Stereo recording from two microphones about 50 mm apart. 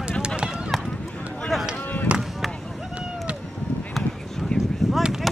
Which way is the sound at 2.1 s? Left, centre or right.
Right.